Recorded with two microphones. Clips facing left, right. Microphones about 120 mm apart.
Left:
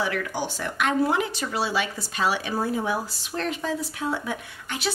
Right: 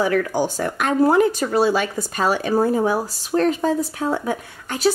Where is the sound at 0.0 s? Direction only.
40° right (ahead or behind).